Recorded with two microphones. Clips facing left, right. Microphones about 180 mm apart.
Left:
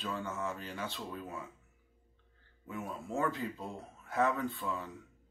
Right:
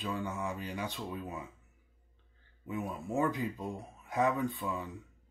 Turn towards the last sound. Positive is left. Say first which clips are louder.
# right 2 dB
turn(degrees=-20)  # may be behind; listen again after turning